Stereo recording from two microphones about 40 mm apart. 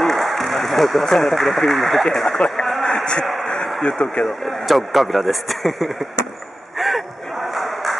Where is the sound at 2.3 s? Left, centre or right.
Centre.